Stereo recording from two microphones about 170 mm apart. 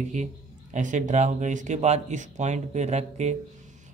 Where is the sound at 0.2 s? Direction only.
40° right (ahead or behind).